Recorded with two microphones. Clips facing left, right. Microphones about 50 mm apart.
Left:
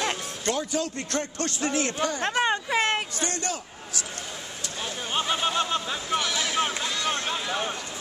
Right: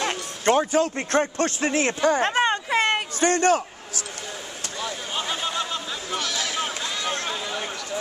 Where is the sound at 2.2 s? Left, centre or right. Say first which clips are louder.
Right 4 dB; right.